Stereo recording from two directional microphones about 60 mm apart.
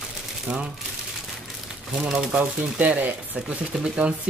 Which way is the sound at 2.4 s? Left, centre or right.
Right.